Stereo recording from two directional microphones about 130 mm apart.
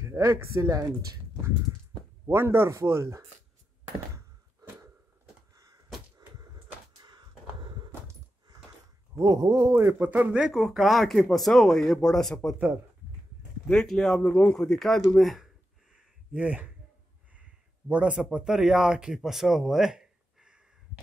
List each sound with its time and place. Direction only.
0.0 s speech: 20° right (ahead or behind)
2.2 s speech: 20° right (ahead or behind)
5.5 s door: 30° right (ahead or behind)
6.1 s a sound: 30° right (ahead or behind)
9.1 s a man's voice: 30° right (ahead or behind); by 12.5 s 5° left (ahead or behind)
13.7 s speech: 5° left (ahead or behind)
17.3 s a sound: 10° right (ahead or behind)
18.3 s speech: 5° right (ahead or behind)